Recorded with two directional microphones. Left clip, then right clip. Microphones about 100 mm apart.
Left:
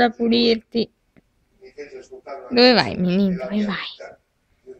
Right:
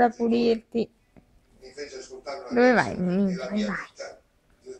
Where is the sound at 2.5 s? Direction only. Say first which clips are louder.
Left 5 dB; 15° left (ahead or behind).